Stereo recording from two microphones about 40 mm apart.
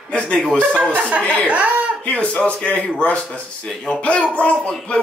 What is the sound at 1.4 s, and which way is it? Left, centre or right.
Speech, right.